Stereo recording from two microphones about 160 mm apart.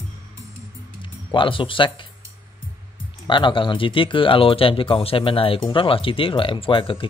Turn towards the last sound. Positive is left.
turn(degrees=35)  # may be behind; listen again after turning